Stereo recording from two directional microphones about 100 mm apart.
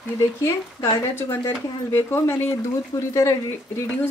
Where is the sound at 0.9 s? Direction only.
25° left (ahead or behind).